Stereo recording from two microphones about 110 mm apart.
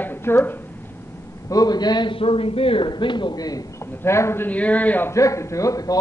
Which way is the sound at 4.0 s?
25° left (ahead or behind).